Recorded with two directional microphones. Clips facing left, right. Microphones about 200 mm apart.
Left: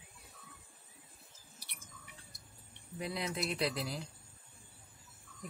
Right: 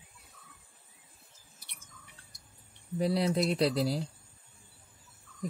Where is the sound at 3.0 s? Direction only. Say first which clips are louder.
Right 10 dB; 35° right (ahead or behind).